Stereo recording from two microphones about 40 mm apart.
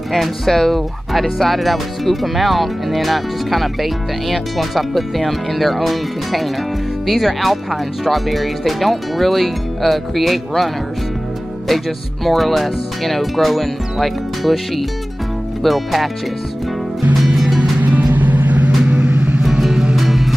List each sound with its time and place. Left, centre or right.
0.1 s speech: centre
12.3 s speech: centre
17.2 s music: centre
17.6 s music: right
18.9 s vehicle: right
19.6 s music: centre
20.0 s music: centre